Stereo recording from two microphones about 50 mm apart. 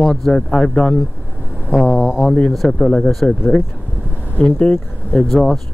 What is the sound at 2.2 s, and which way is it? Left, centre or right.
Speech, left.